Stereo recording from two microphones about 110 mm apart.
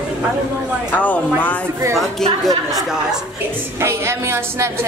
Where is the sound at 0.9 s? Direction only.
15° left (ahead or behind).